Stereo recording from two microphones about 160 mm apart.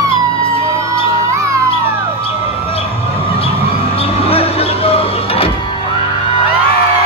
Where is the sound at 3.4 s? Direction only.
35° left (ahead or behind).